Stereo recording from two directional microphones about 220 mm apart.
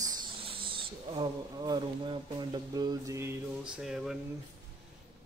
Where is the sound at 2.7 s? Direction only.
15° right (ahead or behind).